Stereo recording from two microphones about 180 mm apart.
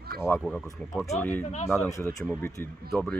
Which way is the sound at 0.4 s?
Centre (ahead or behind).